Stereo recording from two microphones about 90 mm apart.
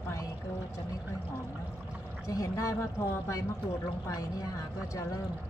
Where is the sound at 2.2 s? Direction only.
40° left (ahead or behind).